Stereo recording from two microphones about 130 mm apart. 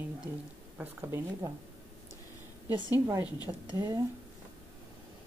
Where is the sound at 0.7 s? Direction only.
15° right (ahead or behind).